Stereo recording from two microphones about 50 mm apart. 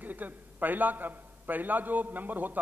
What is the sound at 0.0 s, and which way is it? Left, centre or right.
A man's voice, right.